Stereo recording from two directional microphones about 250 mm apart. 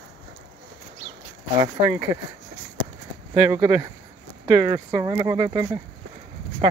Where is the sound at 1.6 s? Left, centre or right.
Centre.